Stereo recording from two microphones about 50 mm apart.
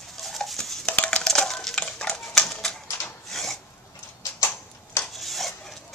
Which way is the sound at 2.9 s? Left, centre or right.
Left.